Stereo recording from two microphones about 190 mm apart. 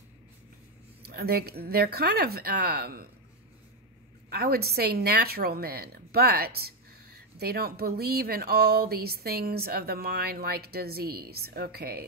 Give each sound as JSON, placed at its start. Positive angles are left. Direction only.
{"t": 1.0, "sound": "speech", "side_deg": -55}
{"t": 4.3, "sound": "speech", "side_deg": -55}